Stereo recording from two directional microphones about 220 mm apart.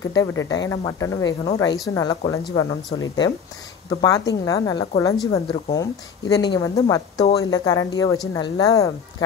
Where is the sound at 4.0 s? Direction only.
15° left (ahead or behind).